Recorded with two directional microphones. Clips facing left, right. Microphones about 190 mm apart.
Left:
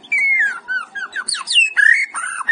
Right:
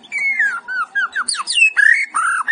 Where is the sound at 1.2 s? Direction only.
30° left (ahead or behind).